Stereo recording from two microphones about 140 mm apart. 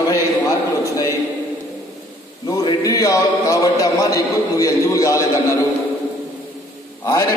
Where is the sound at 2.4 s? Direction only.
25° left (ahead or behind).